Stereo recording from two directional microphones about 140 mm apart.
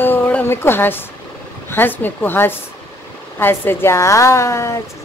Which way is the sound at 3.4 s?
15° left (ahead or behind).